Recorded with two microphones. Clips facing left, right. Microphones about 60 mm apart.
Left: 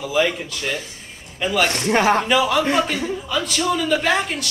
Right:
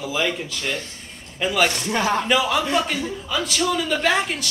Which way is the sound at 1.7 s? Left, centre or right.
Left.